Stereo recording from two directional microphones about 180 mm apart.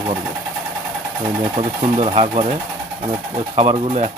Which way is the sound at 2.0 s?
35° right (ahead or behind).